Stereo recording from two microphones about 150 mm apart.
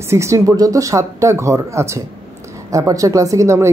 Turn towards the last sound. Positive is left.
turn(degrees=-20)  # may be behind; listen again after turning